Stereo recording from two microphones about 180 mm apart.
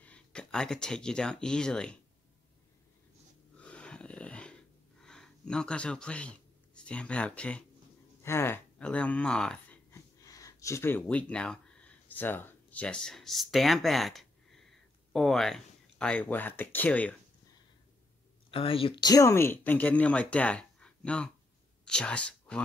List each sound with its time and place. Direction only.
0.0 s speech: 5° left (ahead or behind)
3.5 s a sound: 5° left (ahead or behind)
8.2 s speech: 15° left (ahead or behind)
9.8 s speech: 20° left (ahead or behind)
18.5 s speech: 30° left (ahead or behind); by 22.6 s 5° left (ahead or behind)